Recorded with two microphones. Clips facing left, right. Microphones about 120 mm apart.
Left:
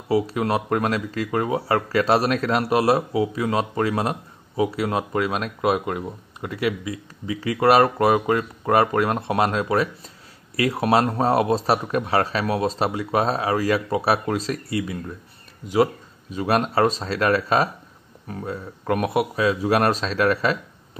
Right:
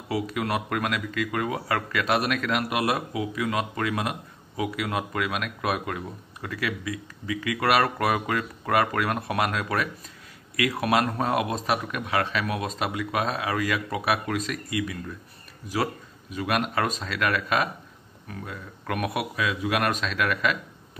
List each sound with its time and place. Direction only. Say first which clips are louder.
0.1 s a man's voice: left 6 dB; 30° left (ahead or behind)